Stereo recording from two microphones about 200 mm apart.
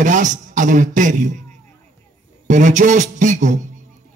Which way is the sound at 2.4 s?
40° right (ahead or behind).